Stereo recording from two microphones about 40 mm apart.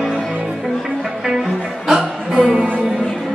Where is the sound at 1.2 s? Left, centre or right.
Centre.